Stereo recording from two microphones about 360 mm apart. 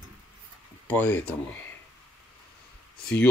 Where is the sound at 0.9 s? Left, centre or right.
Centre.